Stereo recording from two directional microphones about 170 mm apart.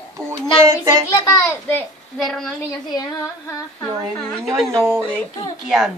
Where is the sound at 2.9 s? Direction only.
25° left (ahead or behind).